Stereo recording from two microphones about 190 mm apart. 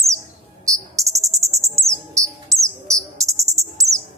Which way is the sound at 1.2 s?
15° right (ahead or behind).